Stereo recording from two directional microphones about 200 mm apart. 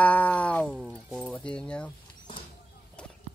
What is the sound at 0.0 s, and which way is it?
Cat, 5° left (ahead or behind).